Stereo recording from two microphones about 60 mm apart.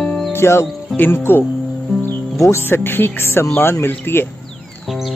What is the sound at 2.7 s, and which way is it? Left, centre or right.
Speech, left.